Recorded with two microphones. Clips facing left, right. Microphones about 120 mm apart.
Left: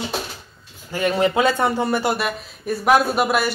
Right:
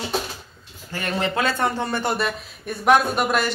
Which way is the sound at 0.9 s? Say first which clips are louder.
Left 6 dB; 15° left (ahead or behind).